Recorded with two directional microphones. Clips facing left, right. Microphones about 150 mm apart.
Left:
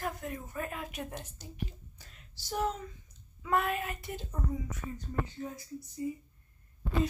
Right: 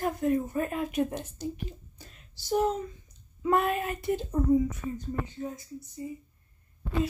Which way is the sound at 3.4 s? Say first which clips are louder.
Right 5 dB; 30° right (ahead or behind).